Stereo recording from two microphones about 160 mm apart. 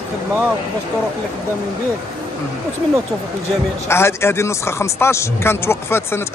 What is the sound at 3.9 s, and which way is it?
A man's voice, 15° left (ahead or behind).